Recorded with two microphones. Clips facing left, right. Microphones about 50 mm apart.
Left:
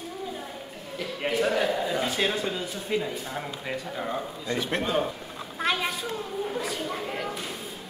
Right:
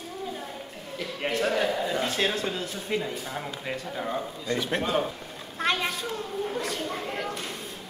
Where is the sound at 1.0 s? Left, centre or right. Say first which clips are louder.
Left 1 dB; centre.